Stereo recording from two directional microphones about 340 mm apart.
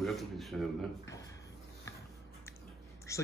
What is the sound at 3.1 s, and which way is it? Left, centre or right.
Speech, centre.